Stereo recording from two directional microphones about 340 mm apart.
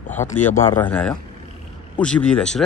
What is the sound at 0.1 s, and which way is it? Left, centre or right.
A man's voice, centre.